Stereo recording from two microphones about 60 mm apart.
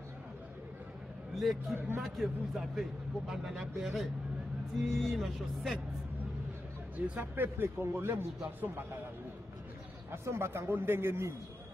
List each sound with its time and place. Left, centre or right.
1.3 s a man's voice: centre
7.0 s speech: right
8.5 s speech: right
10.1 s speech: right